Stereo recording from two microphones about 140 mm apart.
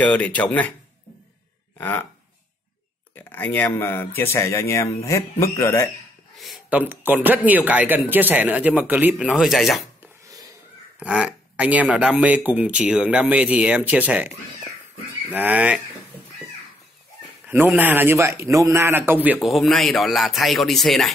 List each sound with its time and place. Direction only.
0.0 s speech: 10° left (ahead or behind)
1.8 s speech: 15° left (ahead or behind)
3.2 s speech: 15° left (ahead or behind)
6.3 s a sound: centre (ahead or behind)
6.7 s speech: 15° right (ahead or behind)
11.0 s speech: 10° right (ahead or behind)
15.3 s speech: 10° right (ahead or behind)
17.6 s speech: 10° right (ahead or behind)
19.4 s speech: centre (ahead or behind)